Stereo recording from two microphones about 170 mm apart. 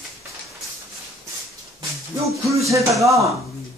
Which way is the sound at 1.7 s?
20° right (ahead or behind).